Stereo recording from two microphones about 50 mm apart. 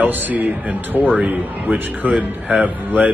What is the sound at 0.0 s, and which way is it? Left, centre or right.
Speech, right.